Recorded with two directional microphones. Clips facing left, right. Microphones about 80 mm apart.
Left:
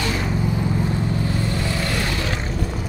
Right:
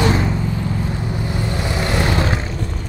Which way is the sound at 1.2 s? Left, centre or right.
Centre.